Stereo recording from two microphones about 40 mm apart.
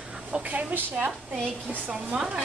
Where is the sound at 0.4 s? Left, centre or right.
Right.